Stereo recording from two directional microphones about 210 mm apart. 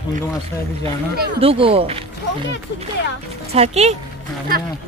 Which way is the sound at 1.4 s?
25° right (ahead or behind).